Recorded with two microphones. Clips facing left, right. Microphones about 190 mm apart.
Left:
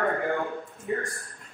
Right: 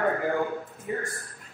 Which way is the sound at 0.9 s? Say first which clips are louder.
Left 2 dB; 5° right (ahead or behind).